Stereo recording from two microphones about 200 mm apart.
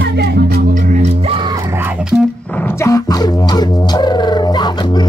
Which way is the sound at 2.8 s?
15° left (ahead or behind).